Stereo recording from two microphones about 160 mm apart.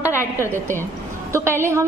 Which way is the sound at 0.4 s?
15° right (ahead or behind).